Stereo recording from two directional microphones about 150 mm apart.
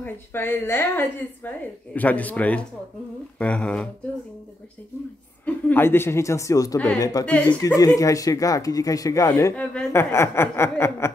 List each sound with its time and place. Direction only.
0.0 s a woman's voice: 15° left (ahead or behind)
5.4 s speech: 15° left (ahead or behind)
9.6 s a woman's voice: 15° left (ahead or behind)